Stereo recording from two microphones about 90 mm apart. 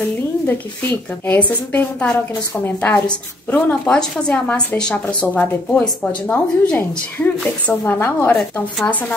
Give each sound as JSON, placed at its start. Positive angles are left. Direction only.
{"t": 0.5, "sound": "a woman's voice", "side_deg": 20}